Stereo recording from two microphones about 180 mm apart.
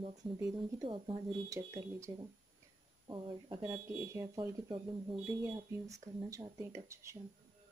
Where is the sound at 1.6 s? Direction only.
15° right (ahead or behind).